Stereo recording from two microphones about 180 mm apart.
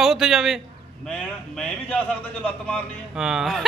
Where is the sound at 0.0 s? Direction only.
5° right (ahead or behind).